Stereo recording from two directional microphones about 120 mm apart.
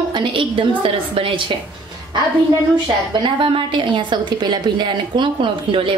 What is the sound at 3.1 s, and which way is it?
A woman's voice, 45° right (ahead or behind).